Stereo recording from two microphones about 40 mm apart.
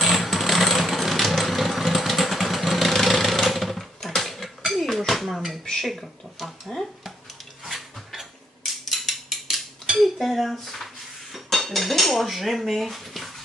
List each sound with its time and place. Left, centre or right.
0.0 s engine: centre
4.0 s dishes: centre
5.8 s speech: centre
7.6 s a sound: centre
11.3 s dishes: centre